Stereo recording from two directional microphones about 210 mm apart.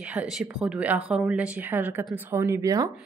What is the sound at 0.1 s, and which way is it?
A woman's voice, 5° right (ahead or behind).